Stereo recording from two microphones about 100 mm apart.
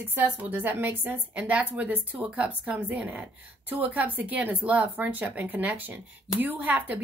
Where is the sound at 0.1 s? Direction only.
15° right (ahead or behind).